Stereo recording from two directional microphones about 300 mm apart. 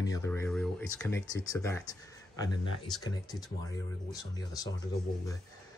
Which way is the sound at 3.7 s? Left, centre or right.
Centre.